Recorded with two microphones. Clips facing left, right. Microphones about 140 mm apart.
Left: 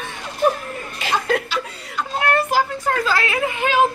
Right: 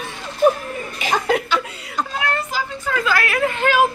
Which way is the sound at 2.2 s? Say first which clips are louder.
Left 10 dB; 60° left (ahead or behind).